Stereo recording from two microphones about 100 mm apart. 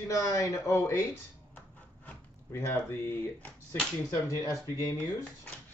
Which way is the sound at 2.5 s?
25° left (ahead or behind).